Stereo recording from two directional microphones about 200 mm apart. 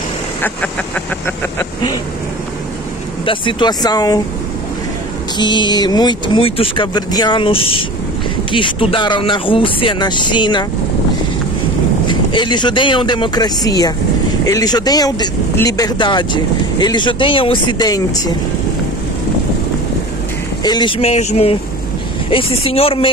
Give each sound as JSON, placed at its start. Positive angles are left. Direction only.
{"t": 0.4, "sound": "vehicle", "side_deg": 10}
{"t": 3.3, "sound": "speech", "side_deg": 25}
{"t": 5.4, "sound": "speech", "side_deg": 20}
{"t": 12.1, "sound": "speech", "side_deg": 25}
{"t": 20.6, "sound": "speech", "side_deg": 20}